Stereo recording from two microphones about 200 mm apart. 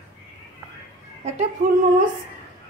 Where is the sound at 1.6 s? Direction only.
40° right (ahead or behind).